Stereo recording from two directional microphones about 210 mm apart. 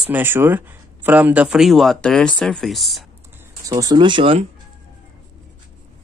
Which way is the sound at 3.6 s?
15° right (ahead or behind).